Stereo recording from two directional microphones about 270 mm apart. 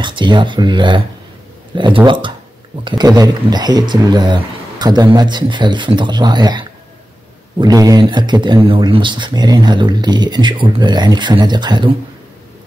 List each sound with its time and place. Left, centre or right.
0.0 s speech: centre